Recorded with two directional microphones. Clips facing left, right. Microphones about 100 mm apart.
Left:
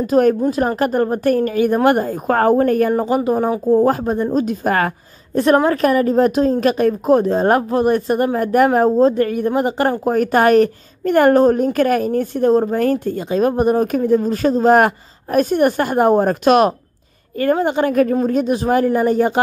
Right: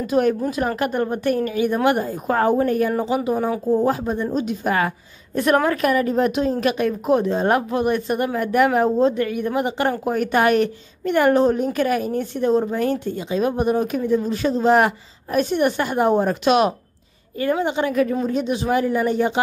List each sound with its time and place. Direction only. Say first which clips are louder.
0.0 s a woman's voice: left 5 dB; 40° left (ahead or behind)
3.3 s a woman's voice: left 4 dB; 35° left (ahead or behind)
3.7 s speech: left 6 dB; 45° left (ahead or behind)
5.3 s a woman's voice: left 4 dB; 35° left (ahead or behind)